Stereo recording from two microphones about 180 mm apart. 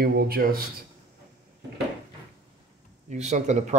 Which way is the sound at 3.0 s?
40° right (ahead or behind).